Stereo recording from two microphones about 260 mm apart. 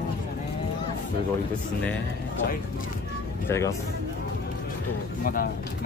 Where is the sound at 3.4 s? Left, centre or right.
Centre.